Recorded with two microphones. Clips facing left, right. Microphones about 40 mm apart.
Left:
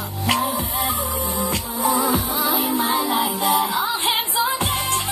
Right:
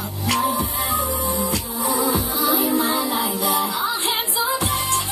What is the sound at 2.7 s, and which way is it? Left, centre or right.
Music, centre.